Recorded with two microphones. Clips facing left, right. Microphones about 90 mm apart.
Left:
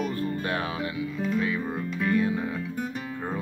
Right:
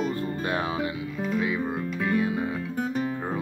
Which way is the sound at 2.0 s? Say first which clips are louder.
Left 1 dB; 15° right (ahead or behind).